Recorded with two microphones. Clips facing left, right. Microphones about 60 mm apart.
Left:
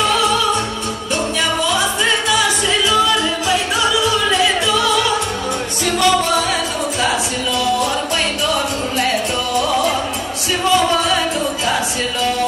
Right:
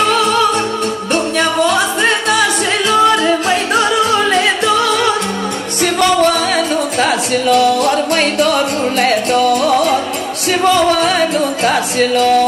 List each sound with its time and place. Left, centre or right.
0.0 s music: right